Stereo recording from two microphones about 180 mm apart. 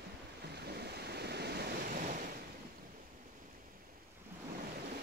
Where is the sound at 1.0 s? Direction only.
65° right (ahead or behind); by 2.2 s 45° right (ahead or behind).